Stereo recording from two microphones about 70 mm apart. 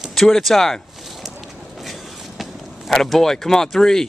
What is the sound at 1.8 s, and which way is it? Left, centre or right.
Walk, centre.